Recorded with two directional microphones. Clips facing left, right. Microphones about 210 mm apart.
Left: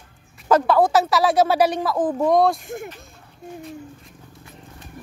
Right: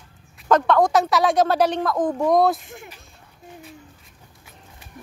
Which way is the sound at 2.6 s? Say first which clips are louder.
Left 9 dB; 50° left (ahead or behind).